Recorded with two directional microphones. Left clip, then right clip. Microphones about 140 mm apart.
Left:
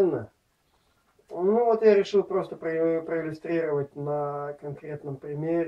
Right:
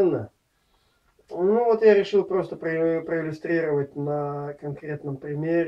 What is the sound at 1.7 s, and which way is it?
Speech, 5° right (ahead or behind).